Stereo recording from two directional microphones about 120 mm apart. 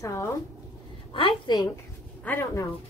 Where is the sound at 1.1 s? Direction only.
45° left (ahead or behind).